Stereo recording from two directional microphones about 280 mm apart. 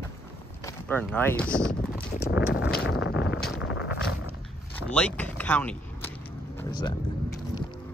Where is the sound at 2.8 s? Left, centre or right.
Left.